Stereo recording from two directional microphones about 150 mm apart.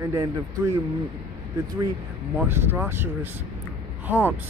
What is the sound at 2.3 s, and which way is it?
Speech, 15° right (ahead or behind).